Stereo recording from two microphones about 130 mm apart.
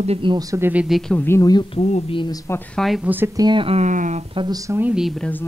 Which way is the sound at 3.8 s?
70° right (ahead or behind).